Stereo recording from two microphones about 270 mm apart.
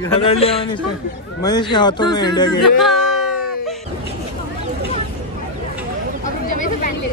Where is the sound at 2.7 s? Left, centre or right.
Centre.